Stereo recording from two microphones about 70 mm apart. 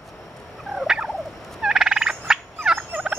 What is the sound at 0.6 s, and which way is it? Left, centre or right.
Fowl, centre.